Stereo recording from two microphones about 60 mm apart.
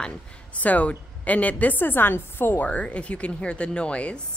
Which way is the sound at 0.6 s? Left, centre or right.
Left.